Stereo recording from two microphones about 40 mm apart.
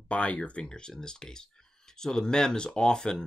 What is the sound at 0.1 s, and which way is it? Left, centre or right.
Speech, left.